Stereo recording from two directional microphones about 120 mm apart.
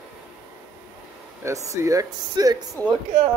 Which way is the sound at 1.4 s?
25° right (ahead or behind).